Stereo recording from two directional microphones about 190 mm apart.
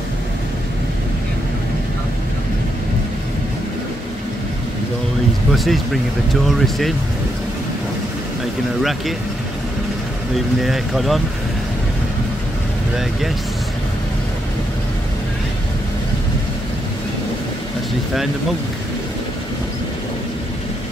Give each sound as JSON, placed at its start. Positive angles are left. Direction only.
{"t": 5.5, "sound": "speech", "side_deg": 0}
{"t": 10.3, "sound": "speech", "side_deg": 0}